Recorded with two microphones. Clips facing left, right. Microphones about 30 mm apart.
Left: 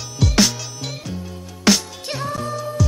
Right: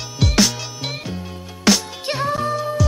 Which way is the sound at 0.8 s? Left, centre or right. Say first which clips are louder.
Right 3 dB; right.